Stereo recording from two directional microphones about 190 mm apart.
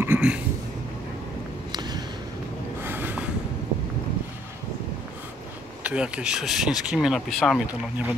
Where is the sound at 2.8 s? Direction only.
10° right (ahead or behind).